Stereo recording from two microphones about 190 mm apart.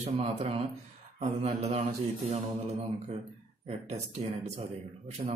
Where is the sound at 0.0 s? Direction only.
35° right (ahead or behind).